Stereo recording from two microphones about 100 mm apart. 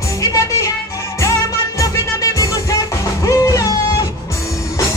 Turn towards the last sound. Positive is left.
turn(degrees=35)  # may be behind; listen again after turning